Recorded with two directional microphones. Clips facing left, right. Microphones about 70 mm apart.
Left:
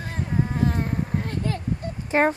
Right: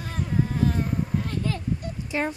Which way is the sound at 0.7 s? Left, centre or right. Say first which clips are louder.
Even; left.